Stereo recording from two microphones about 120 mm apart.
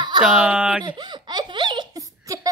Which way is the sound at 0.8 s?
40° right (ahead or behind).